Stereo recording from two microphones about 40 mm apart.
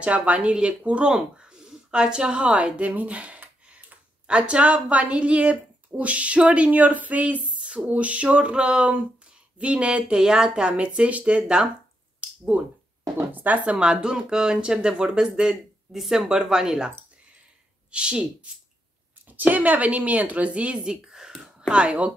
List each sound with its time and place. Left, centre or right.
0.0 s speech: right
1.1 s a woman's voice: centre
10.1 s speech: centre
10.7 s speech: right
12.2 s a sound: right
13.7 s speech: right
17.9 s speech: right
19.2 s speech: right
20.8 s speech: centre